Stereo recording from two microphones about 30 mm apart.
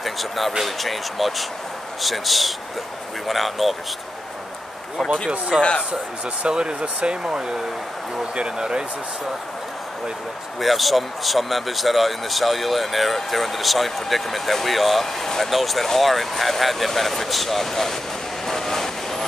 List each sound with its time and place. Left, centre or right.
0.0 s speech: centre
5.5 s speech: centre
6.4 s speech: right
7.2 s speech: right
10.6 s speech: centre
15.2 s speech: centre
15.5 s speech: centre
18.5 s train: centre